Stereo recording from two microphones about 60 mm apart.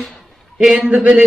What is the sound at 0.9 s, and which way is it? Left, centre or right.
Speech, centre.